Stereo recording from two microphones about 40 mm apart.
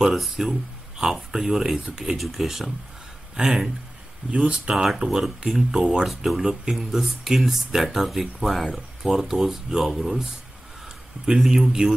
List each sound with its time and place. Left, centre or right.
0.0 s speech: centre
4.5 s speech: right
4.8 s speech: centre
6.0 s speech: centre
11.2 s speech: centre